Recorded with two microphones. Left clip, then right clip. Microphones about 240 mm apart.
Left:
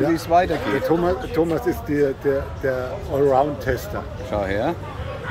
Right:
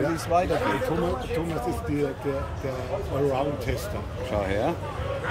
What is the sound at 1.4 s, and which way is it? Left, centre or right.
Speech, left.